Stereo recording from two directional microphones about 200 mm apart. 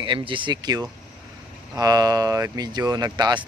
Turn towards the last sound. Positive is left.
turn(degrees=-20)  # may be behind; listen again after turning